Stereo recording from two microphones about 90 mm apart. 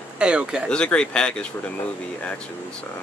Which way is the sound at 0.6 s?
10° left (ahead or behind).